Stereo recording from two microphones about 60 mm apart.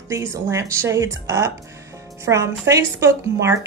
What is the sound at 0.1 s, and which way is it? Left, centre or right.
Speech, right.